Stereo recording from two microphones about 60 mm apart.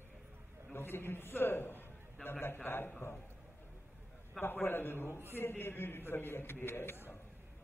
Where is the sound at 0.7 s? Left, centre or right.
Left.